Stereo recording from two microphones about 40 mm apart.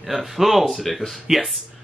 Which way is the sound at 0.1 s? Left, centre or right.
Centre.